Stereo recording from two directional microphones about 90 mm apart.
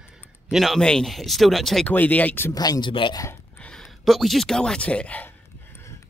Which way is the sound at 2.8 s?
65° left (ahead or behind).